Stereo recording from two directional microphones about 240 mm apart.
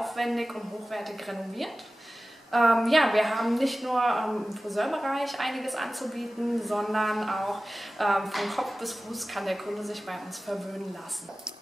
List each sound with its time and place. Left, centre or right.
0.0 s a woman's voice: centre